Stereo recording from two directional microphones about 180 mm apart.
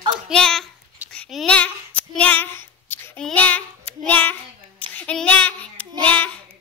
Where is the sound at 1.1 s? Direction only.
5° left (ahead or behind).